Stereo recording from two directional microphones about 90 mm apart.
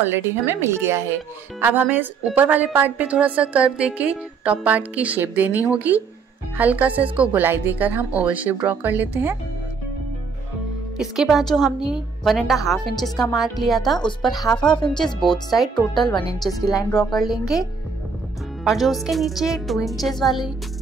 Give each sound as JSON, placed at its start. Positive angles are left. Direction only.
{"t": 0.0, "sound": "speech", "side_deg": -25}
{"t": 11.0, "sound": "a woman's voice", "side_deg": -5}
{"t": 18.6, "sound": "a woman's voice", "side_deg": 0}